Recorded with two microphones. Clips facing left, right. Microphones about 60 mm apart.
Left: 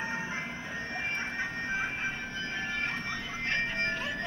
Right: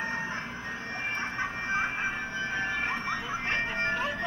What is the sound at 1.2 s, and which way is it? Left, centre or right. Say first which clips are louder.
Train: right 2 dB; centre.